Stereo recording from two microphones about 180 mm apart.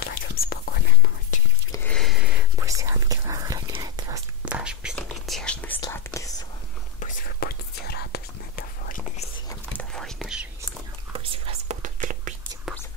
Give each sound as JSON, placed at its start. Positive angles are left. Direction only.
{"t": 0.0, "sound": "whispering", "side_deg": 55}
{"t": 1.7, "sound": "a sound", "side_deg": 10}
{"t": 2.0, "sound": "a sound", "side_deg": 0}
{"t": 2.6, "sound": "whispering", "side_deg": -15}
{"t": 4.5, "sound": "whispering", "side_deg": -5}
{"t": 7.0, "sound": "whispering", "side_deg": 45}
{"t": 9.7, "sound": "whispering", "side_deg": 5}
{"t": 11.1, "sound": "whispering", "side_deg": -35}